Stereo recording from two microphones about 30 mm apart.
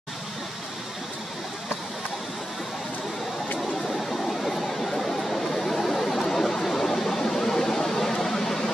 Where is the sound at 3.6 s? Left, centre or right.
Centre.